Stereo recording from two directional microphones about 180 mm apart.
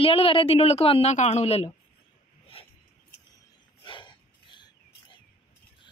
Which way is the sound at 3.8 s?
25° left (ahead or behind).